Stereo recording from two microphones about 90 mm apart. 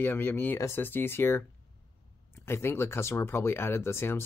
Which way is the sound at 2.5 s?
25° left (ahead or behind).